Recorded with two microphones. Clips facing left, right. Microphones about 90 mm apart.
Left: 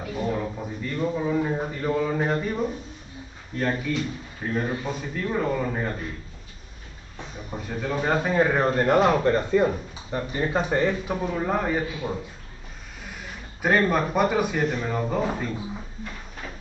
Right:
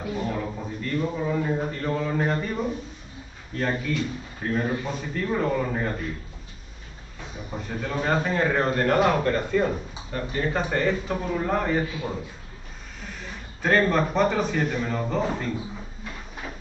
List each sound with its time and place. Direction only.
0.1 s a man's voice: 10° left (ahead or behind)
7.5 s a man's voice: 5° left (ahead or behind)
13.6 s a man's voice: 10° left (ahead or behind)